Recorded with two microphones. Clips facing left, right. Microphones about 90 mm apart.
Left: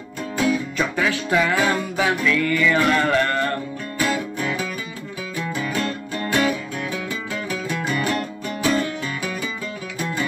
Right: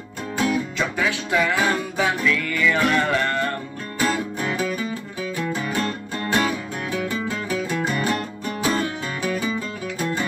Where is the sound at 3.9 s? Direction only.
35° right (ahead or behind).